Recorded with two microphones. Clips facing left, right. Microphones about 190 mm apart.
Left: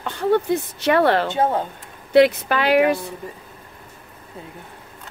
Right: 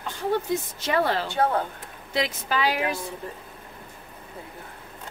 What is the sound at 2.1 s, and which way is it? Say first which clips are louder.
Speech: left 12 dB; 65° left (ahead or behind).